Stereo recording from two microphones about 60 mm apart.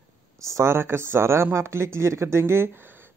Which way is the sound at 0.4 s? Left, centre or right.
Right.